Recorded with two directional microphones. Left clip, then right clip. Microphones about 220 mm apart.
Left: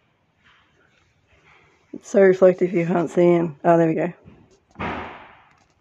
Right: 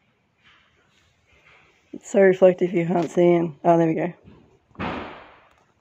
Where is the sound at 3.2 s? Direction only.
40° left (ahead or behind).